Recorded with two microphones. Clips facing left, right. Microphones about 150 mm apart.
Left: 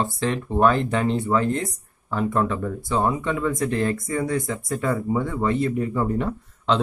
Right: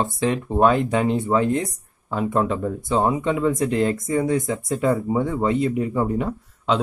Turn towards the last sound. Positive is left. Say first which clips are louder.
# even
turn(degrees=-10)  # may be behind; listen again after turning